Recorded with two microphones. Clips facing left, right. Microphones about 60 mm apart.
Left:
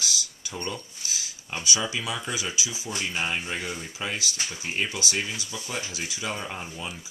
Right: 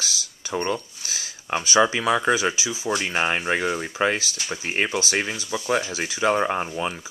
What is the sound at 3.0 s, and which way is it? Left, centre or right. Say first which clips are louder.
Speech: right 4 dB; right.